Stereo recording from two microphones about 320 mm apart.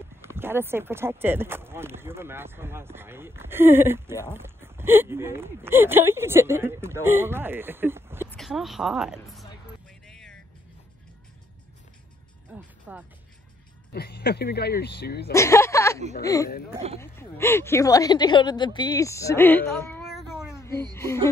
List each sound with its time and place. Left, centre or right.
0.2 s a woman's voice: centre
10.0 s vehicle: centre
12.4 s music: centre
13.9 s speech: left
15.3 s speech: centre
16.7 s speech: centre
17.0 s speech: centre
19.9 s cat: centre
20.9 s speech: centre